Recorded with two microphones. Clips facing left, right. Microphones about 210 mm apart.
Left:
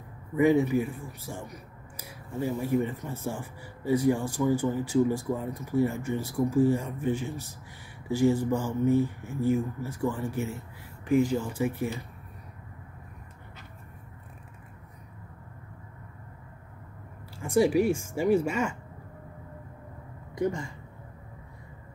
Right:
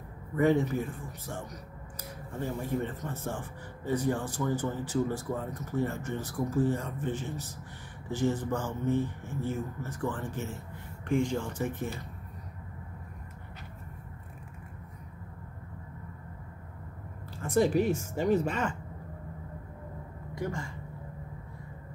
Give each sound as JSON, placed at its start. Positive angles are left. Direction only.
{"t": 0.4, "sound": "speech", "side_deg": 10}
{"t": 17.4, "sound": "speech", "side_deg": 10}
{"t": 20.3, "sound": "speech", "side_deg": 20}